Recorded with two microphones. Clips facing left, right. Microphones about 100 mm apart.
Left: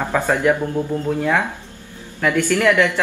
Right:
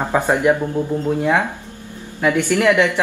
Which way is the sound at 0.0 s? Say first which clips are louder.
Right 1 dB; 15° right (ahead or behind).